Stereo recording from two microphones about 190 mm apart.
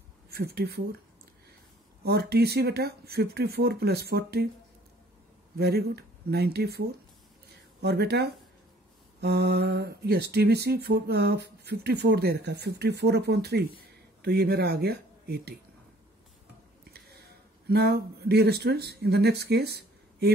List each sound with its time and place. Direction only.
0.3 s speech: 55° right (ahead or behind)
2.0 s speech: 55° right (ahead or behind)
5.6 s speech: 55° right (ahead or behind)
7.8 s speech: 60° right (ahead or behind)
17.6 s speech: 55° right (ahead or behind)